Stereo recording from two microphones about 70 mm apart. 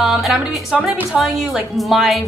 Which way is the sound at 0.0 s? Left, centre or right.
Centre.